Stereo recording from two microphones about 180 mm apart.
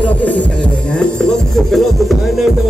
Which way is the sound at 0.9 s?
5° left (ahead or behind).